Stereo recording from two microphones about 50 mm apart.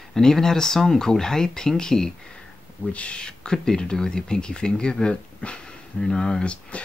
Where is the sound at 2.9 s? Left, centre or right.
Left.